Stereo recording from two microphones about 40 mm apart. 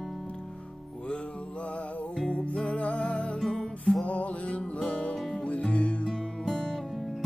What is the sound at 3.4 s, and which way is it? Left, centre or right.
Music, centre.